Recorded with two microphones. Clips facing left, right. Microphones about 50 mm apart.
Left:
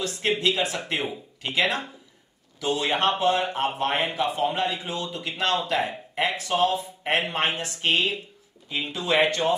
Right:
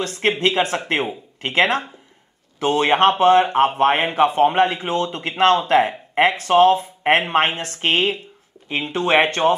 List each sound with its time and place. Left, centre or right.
0.0 s speech: right